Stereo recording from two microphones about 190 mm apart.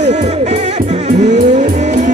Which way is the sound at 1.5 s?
40° right (ahead or behind).